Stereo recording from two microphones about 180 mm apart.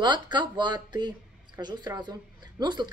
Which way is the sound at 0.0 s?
25° right (ahead or behind).